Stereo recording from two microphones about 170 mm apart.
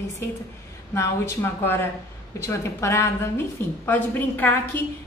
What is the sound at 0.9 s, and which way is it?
A woman's voice, 15° left (ahead or behind).